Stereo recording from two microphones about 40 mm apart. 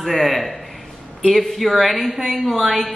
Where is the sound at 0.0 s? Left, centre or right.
Centre.